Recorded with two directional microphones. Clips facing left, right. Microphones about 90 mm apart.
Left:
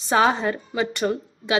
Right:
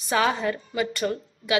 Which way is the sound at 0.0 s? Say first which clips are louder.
Left 4 dB; 30° left (ahead or behind).